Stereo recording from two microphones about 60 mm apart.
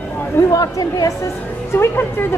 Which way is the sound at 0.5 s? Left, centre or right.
Left.